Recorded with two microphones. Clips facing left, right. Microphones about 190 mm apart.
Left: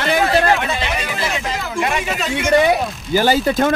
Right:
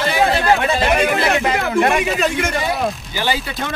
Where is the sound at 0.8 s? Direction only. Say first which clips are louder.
Right 7 dB; 55° right (ahead or behind).